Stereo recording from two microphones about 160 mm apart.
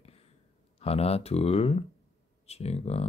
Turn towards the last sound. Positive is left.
turn(degrees=40)  # may be behind; listen again after turning